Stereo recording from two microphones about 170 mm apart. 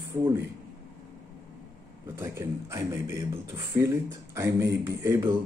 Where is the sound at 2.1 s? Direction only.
15° right (ahead or behind).